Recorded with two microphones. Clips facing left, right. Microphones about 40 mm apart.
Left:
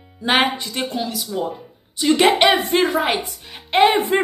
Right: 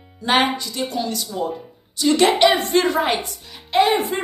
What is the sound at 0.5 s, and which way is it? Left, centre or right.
Speech, left.